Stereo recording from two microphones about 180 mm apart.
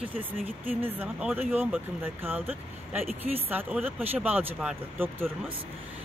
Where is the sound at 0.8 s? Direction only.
10° right (ahead or behind).